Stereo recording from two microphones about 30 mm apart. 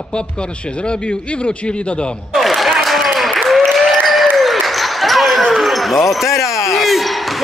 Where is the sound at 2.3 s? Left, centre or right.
Centre.